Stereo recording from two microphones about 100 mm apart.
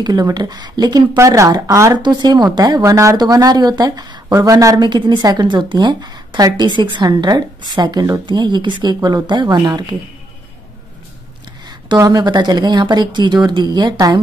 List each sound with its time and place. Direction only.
0.0 s a woman's voice: 40° right (ahead or behind)
1.1 s speech: 30° right (ahead or behind)
2.0 s speech: 50° right (ahead or behind)
4.8 s a woman's voice: 50° right (ahead or behind)
12.0 s a woman's voice: 40° right (ahead or behind)